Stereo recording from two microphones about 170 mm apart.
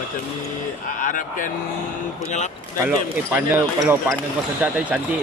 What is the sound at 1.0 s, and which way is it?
Speech, 50° left (ahead or behind).